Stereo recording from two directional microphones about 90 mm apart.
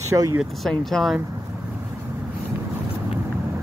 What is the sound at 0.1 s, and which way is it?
Speech, 30° right (ahead or behind).